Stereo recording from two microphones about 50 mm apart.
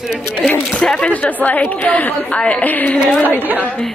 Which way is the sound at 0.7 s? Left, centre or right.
Centre.